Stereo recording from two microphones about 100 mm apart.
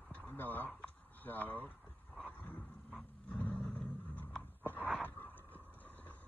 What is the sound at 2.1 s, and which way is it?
Roar, 10° left (ahead or behind).